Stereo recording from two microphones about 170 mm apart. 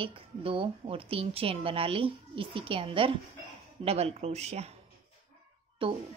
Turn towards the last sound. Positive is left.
turn(degrees=-30)  # may be behind; listen again after turning